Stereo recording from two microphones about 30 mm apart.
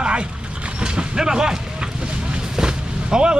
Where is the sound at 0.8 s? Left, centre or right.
Right.